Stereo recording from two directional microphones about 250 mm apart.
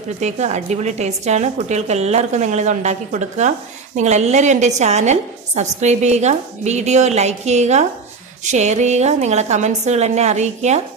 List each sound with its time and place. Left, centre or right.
0.2 s a woman's voice: right